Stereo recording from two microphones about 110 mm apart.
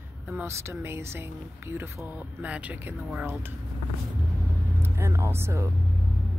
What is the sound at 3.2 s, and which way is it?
Speech, 20° right (ahead or behind).